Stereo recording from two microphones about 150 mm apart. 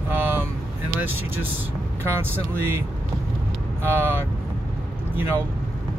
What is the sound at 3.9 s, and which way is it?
Speech, 15° right (ahead or behind).